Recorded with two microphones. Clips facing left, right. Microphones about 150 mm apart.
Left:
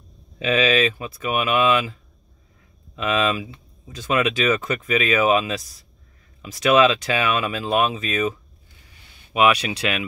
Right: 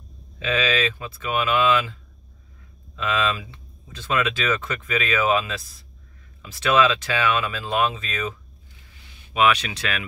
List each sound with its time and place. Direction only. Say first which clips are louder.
0.4 s speech: left 4 dB; 15° left (ahead or behind)
3.0 s speech: left 3 dB; 20° left (ahead or behind)
9.3 s speech: left 2 dB; 10° left (ahead or behind)